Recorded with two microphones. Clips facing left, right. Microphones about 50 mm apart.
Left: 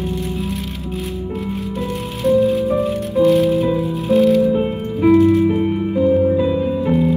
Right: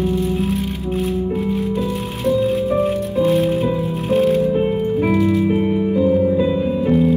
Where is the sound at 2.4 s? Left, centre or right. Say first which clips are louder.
Even; right.